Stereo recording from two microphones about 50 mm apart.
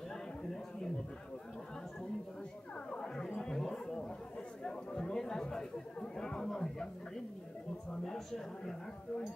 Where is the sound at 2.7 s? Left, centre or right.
Centre.